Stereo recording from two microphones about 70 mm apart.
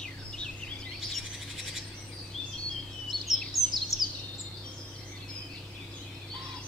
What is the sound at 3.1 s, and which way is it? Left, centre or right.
Bird vocalization, right.